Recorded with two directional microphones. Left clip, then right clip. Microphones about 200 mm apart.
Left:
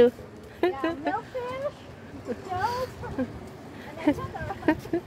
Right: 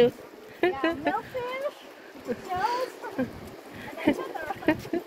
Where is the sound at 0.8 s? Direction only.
10° right (ahead or behind).